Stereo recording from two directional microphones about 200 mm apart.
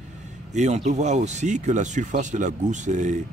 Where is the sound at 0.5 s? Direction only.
35° right (ahead or behind).